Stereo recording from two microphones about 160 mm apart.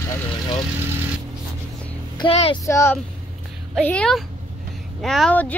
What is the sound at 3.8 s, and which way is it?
Speech, 5° left (ahead or behind).